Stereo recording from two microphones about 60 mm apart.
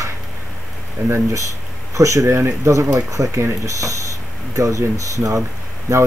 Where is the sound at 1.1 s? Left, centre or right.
Right.